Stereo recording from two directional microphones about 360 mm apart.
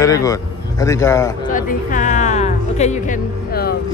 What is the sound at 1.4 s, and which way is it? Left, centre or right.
Music, left.